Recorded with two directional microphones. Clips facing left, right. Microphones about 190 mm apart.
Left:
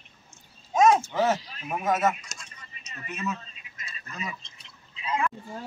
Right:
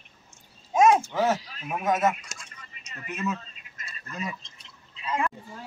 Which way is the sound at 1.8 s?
5° left (ahead or behind).